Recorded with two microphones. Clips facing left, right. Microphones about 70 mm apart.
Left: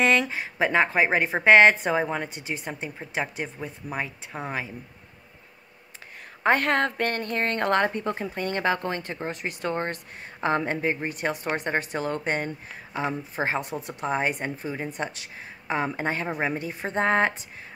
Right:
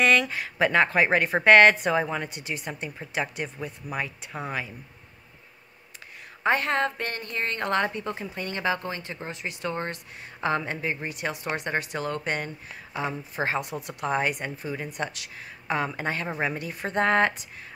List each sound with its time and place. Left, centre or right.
0.0 s a sound: left
0.9 s a woman's voice: left
6.4 s a woman's voice: left
16.3 s a woman's voice: centre